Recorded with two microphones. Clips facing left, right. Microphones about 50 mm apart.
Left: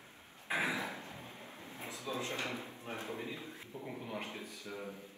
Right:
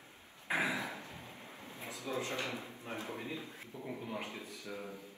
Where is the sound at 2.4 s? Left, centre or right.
Left.